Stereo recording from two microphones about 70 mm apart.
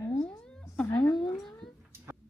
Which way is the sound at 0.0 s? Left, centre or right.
Left.